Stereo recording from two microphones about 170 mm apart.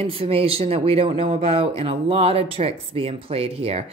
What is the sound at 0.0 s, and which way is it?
A woman's voice, 35° right (ahead or behind).